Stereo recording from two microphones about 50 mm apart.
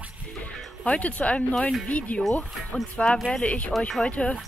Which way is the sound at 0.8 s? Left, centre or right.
Left.